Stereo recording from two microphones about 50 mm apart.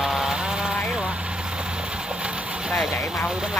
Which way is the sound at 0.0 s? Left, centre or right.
Centre.